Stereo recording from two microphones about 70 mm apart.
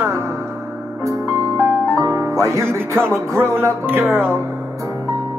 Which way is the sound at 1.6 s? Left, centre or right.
Right.